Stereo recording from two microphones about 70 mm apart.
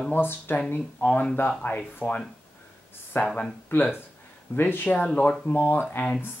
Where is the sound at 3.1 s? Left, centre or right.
Left.